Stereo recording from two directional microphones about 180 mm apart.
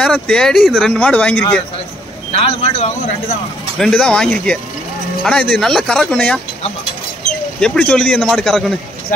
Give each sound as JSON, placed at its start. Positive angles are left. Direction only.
{"t": 0.0, "sound": "speech", "side_deg": 5}
{"t": 2.3, "sound": "a man's voice", "side_deg": 35}
{"t": 3.7, "sound": "speech", "side_deg": 5}
{"t": 7.6, "sound": "speech", "side_deg": 5}